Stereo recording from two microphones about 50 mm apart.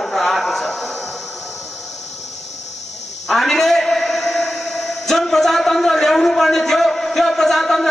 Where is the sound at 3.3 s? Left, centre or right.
Centre.